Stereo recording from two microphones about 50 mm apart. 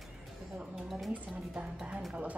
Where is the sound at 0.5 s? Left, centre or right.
Centre.